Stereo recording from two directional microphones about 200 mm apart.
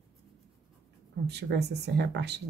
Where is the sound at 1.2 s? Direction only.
55° right (ahead or behind).